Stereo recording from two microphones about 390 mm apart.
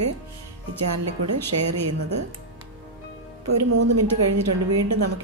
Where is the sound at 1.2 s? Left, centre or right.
Right.